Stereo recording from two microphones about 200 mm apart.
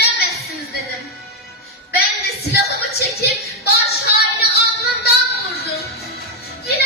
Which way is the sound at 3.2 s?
55° left (ahead or behind).